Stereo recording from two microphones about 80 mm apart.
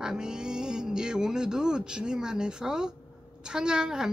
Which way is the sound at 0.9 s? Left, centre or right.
Centre.